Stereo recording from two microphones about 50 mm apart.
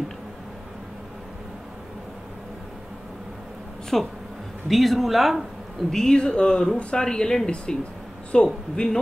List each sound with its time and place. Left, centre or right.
3.9 s speech: centre
5.9 s speech: centre